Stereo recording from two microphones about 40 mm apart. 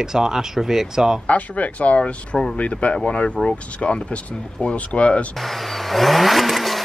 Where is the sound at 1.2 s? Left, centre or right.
Left.